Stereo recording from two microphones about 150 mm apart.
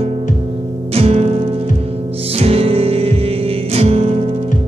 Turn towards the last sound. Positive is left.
turn(degrees=-40)  # may be behind; listen again after turning